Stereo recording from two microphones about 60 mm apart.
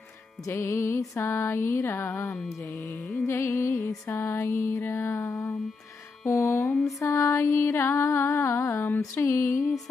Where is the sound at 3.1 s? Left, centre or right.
Left.